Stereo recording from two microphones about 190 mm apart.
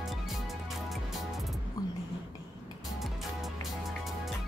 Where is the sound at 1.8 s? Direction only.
20° left (ahead or behind).